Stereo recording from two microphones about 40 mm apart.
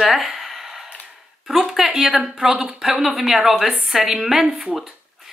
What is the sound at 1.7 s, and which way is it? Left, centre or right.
Speech, centre.